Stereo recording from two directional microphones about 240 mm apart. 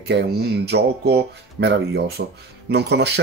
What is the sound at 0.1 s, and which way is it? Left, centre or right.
Speech, right.